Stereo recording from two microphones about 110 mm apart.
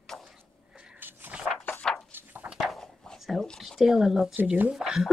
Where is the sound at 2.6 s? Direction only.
Centre (ahead or behind).